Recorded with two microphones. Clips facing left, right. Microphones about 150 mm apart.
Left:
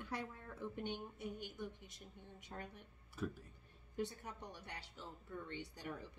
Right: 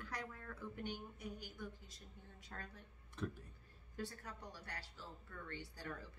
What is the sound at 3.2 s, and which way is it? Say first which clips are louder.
Speech: left 1 dB; 5° left (ahead or behind).